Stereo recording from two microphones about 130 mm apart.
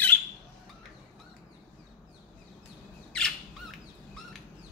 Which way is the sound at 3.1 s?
5° left (ahead or behind).